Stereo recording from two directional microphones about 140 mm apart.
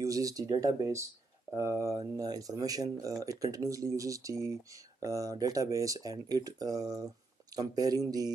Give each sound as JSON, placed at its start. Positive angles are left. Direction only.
{"t": 0.0, "sound": "speech", "side_deg": -25}